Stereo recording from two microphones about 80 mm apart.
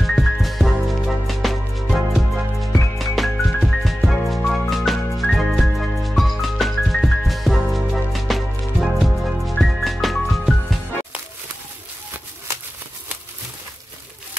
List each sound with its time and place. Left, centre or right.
0.0 s music: centre